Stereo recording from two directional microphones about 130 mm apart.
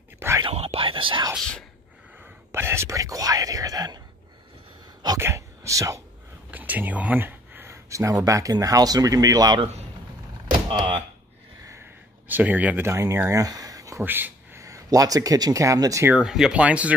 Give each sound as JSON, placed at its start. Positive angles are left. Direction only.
{"t": 0.4, "sound": "whispering", "side_deg": -50}
{"t": 1.3, "sound": "speech", "side_deg": 5}
{"t": 2.5, "sound": "speech", "side_deg": -20}
{"t": 5.2, "sound": "speech", "side_deg": -25}
{"t": 6.5, "sound": "speech", "side_deg": -15}
{"t": 10.7, "sound": "speech", "side_deg": -40}
{"t": 12.3, "sound": "speech", "side_deg": -15}
{"t": 14.0, "sound": "speech", "side_deg": -15}
{"t": 16.1, "sound": "speech", "side_deg": -5}